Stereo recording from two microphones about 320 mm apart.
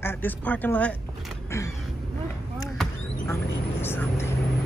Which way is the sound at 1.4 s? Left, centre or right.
Centre.